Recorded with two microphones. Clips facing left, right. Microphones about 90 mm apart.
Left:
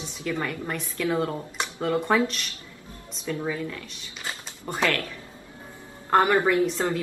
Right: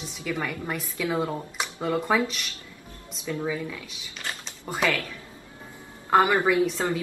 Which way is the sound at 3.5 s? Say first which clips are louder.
Even; 5° right (ahead or behind).